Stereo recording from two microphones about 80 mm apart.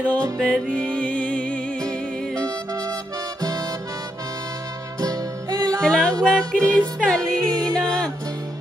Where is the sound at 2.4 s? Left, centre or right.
Right.